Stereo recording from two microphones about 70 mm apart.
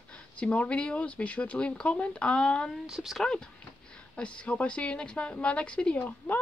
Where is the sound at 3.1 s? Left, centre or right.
Centre.